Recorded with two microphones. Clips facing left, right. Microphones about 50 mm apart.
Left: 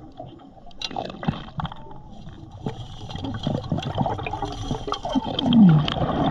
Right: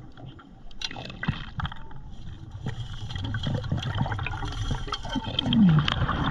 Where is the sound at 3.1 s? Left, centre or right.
Right.